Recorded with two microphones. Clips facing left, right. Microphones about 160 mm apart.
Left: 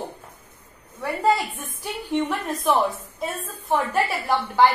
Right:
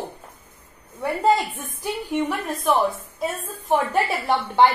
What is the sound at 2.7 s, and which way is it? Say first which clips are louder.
Speech: even; centre (ahead or behind).